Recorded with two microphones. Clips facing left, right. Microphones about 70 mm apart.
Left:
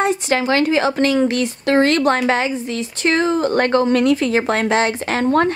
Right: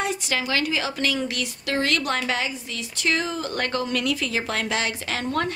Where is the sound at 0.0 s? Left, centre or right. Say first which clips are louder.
Left 9 dB; left.